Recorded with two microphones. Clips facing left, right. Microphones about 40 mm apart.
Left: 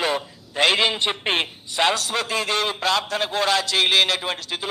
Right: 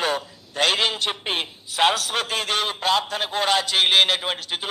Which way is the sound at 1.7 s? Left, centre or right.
Centre.